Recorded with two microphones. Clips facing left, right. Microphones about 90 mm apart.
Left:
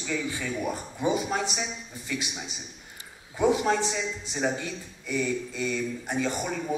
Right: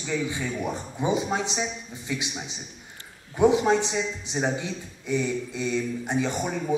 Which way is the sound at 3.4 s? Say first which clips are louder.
Right 4 dB; 20° right (ahead or behind).